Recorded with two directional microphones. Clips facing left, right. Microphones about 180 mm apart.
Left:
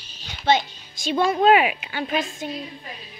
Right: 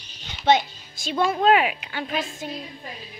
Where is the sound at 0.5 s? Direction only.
Centre (ahead or behind).